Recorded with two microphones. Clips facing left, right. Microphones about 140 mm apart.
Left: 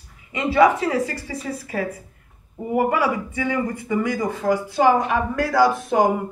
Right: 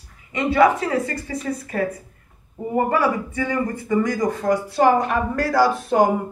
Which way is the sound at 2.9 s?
15° left (ahead or behind).